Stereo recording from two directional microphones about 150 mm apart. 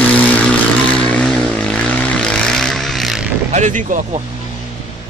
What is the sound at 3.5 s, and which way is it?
Speech, 55° right (ahead or behind).